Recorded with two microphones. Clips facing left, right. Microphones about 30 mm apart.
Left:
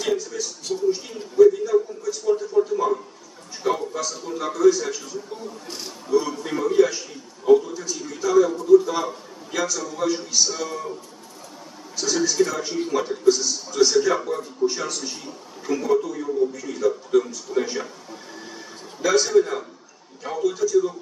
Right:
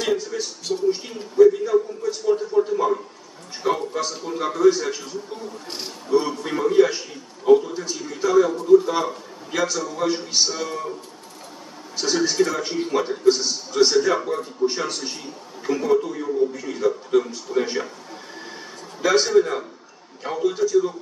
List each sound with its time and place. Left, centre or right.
0.1 s a man's voice: right
6.4 s a man's voice: right
10.5 s a man's voice: centre
12.0 s a man's voice: right
13.9 s a man's voice: centre
19.0 s a man's voice: right